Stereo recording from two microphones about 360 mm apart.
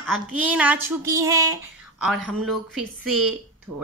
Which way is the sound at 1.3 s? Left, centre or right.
Right.